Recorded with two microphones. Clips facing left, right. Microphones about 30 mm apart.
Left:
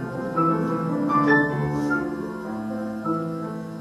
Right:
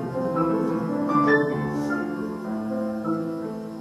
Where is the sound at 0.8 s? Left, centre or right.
Left.